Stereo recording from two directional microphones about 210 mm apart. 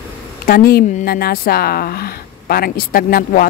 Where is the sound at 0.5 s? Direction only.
45° left (ahead or behind).